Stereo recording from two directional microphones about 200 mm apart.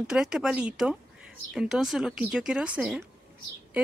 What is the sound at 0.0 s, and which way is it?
A woman's voice, 5° right (ahead or behind).